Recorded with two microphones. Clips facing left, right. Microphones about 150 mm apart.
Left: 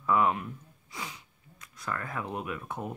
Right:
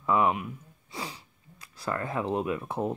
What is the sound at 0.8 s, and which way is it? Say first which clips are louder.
Speech: right 3 dB; 30° right (ahead or behind).